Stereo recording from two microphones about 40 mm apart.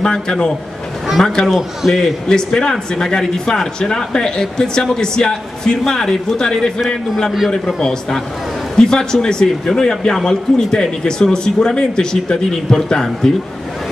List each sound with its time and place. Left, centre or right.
0.0 s speech: left
1.2 s speech: centre
1.8 s a man's voice: centre
2.2 s speech: centre